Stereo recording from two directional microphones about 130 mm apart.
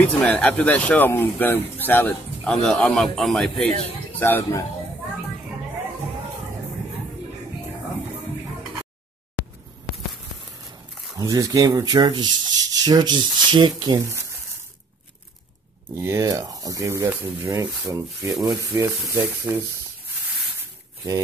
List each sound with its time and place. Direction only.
0.0 s speech: 10° left (ahead or behind)
2.5 s a man's voice: 5° left (ahead or behind)
4.2 s speech: 20° left (ahead or behind)
11.1 s speech: 25° right (ahead or behind)
15.9 s speech: 20° right (ahead or behind)